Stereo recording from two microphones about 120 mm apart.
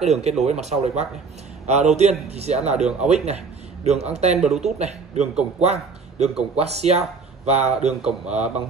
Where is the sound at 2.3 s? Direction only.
65° right (ahead or behind).